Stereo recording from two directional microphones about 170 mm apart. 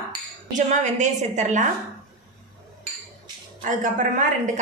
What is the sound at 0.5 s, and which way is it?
A woman's voice, 45° right (ahead or behind).